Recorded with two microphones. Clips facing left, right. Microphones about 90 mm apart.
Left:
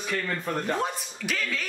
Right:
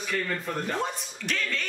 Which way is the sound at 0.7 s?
5° left (ahead or behind).